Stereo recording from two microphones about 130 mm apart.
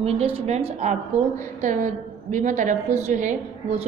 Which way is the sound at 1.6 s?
70° right (ahead or behind).